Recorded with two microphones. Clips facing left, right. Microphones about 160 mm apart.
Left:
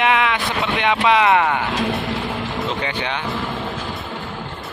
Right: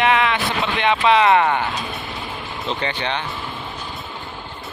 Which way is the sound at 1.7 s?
90° left.